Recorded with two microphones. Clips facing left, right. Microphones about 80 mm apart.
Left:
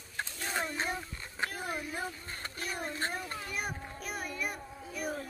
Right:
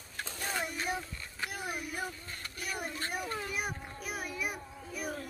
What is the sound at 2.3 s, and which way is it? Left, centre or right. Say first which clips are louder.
Speech: left 2 dB; left.